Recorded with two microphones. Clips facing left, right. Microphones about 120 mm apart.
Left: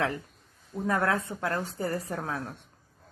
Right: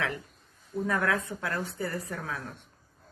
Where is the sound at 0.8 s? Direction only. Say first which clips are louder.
Left 2 dB; 35° left (ahead or behind).